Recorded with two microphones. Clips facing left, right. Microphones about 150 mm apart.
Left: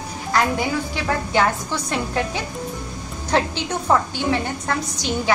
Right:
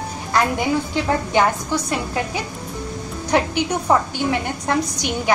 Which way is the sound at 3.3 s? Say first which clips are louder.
Right 2 dB; 15° right (ahead or behind).